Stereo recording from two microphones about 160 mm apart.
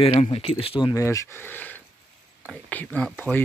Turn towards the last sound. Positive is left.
turn(degrees=10)  # may be behind; listen again after turning